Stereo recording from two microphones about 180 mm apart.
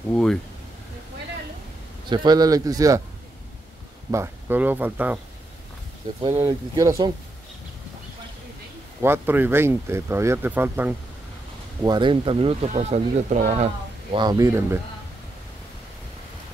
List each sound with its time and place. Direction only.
0.1 s speech: 5° left (ahead or behind)
2.0 s speech: 25° right (ahead or behind)
4.1 s speech: 15° right (ahead or behind)
6.4 s speech: 20° right (ahead or behind)
9.0 s speech: 10° right (ahead or behind)
11.8 s speech: 25° right (ahead or behind)
14.1 s speech: 20° right (ahead or behind)